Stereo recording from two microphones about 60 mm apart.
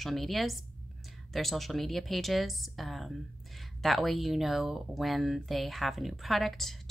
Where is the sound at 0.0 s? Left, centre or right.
Centre.